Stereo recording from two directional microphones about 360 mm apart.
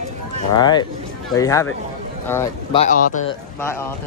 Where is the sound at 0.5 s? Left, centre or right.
Centre.